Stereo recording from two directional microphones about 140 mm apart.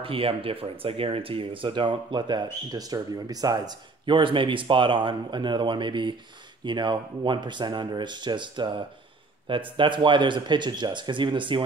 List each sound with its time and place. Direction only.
0.0 s speech: 40° right (ahead or behind)